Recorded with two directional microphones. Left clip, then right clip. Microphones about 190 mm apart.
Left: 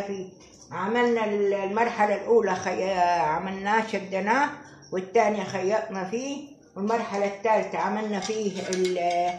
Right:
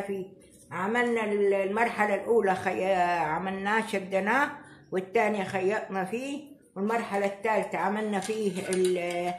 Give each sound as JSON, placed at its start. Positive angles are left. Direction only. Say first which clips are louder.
{"t": 0.7, "sound": "a man's voice", "louder": "left 3 dB", "side_deg": -35}